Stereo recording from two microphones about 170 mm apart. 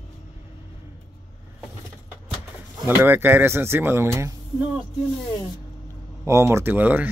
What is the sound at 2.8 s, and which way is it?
Speech, 15° right (ahead or behind).